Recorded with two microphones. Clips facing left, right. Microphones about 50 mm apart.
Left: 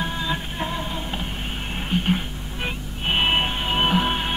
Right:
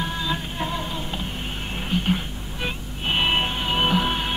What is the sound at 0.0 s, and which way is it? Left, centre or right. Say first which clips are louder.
Music: even; centre.